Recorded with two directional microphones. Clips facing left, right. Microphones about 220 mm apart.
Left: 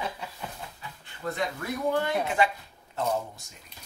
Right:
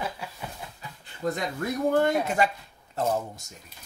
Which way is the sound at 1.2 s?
40° right (ahead or behind).